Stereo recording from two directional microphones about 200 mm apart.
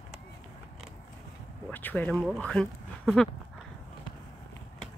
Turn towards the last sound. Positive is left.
turn(degrees=5)  # may be behind; listen again after turning